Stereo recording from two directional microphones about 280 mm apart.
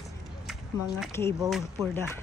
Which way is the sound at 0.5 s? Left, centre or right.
Centre.